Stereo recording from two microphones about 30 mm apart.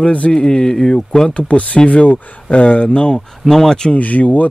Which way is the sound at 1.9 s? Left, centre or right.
Left.